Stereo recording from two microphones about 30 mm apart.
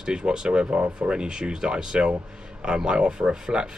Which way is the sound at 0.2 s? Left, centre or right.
Right.